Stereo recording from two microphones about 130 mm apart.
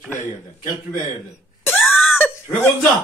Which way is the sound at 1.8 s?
Centre (ahead or behind).